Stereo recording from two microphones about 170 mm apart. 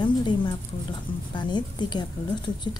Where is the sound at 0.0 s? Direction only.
25° left (ahead or behind).